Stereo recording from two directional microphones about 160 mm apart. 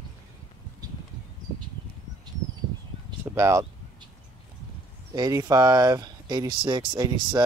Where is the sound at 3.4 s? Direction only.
20° right (ahead or behind).